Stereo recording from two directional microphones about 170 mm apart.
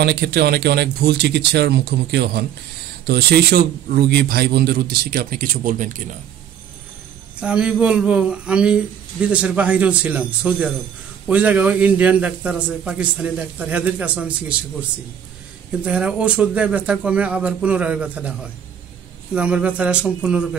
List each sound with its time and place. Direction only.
0.0 s speech: 75° right (ahead or behind); by 2.4 s 90° right
3.1 s a man's voice: 65° right (ahead or behind); by 6.0 s 50° right (ahead or behind)
7.3 s a man's voice: 5° right (ahead or behind)
15.8 s a man's voice: 5° right (ahead or behind)
19.3 s a man's voice: 5° right (ahead or behind)